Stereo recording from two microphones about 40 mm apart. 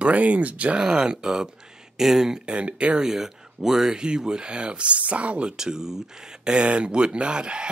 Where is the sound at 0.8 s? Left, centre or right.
Centre.